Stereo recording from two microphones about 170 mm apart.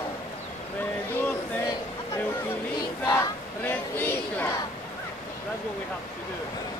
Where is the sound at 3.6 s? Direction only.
10° left (ahead or behind).